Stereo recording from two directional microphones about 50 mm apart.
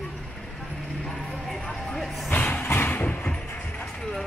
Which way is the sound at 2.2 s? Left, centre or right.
Left.